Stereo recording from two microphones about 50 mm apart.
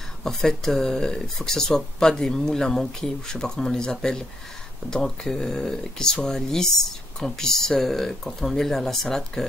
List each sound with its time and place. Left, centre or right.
0.2 s speech: centre